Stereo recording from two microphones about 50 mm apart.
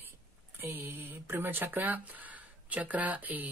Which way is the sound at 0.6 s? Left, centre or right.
Right.